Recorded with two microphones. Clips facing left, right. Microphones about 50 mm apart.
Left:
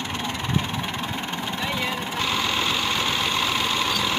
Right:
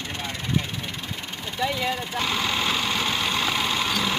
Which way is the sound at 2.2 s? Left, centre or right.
Centre.